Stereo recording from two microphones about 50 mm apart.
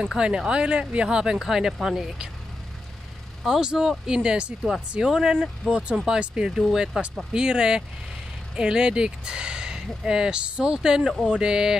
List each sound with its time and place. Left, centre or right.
0.0 s speech: centre
3.4 s speech: centre
6.5 s speech: centre
7.3 s speech: centre